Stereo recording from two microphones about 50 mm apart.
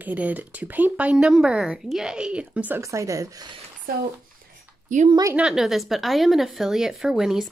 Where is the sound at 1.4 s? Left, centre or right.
Centre.